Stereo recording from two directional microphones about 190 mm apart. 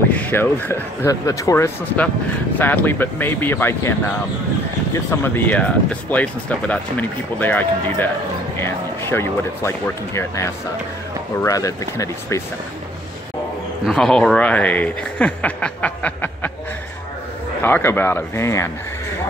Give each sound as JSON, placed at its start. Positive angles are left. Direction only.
{"t": 0.1, "sound": "speech", "side_deg": 10}
{"t": 4.9, "sound": "speech", "side_deg": 15}
{"t": 9.1, "sound": "speech", "side_deg": 15}
{"t": 13.8, "sound": "speech", "side_deg": 5}
{"t": 17.6, "sound": "speech", "side_deg": 10}